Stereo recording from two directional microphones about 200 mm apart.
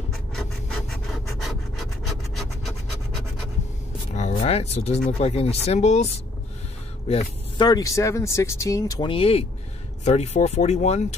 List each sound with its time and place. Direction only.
0.3 s rub: 5° left (ahead or behind)
4.1 s speech: 40° left (ahead or behind)
7.1 s speech: 20° left (ahead or behind)